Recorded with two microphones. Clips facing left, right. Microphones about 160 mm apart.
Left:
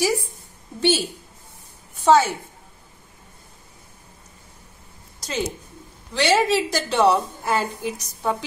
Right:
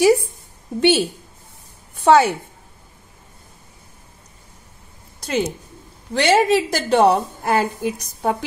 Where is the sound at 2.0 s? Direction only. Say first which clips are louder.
Right 3 dB; 60° right (ahead or behind).